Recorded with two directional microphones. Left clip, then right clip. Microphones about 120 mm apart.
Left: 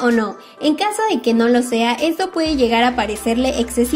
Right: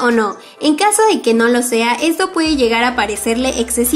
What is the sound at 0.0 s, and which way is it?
Speech, 30° left (ahead or behind).